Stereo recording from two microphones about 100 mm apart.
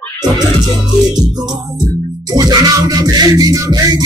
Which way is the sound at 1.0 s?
40° right (ahead or behind).